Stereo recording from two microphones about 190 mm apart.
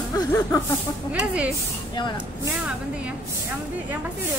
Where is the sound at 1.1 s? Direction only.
5° right (ahead or behind).